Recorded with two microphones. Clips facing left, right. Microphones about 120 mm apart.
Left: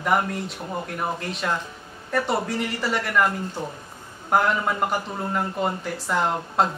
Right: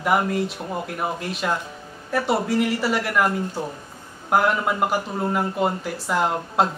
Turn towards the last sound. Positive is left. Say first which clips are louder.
# right 1 dB
turn(degrees=-5)  # may be behind; listen again after turning